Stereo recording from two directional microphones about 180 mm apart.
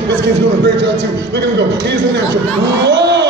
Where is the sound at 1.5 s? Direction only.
70° right (ahead or behind).